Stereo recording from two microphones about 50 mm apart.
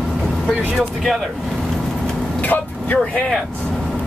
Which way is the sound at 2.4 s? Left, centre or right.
Left.